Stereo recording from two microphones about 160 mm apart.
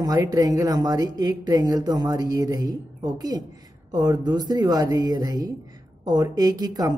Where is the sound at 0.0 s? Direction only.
25° right (ahead or behind).